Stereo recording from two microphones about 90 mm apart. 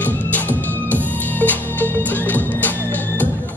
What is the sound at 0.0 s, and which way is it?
Music, 20° left (ahead or behind).